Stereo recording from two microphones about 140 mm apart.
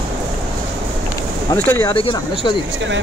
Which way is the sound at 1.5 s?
15° left (ahead or behind).